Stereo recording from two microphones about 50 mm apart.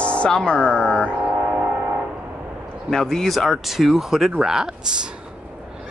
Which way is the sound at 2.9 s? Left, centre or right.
Centre.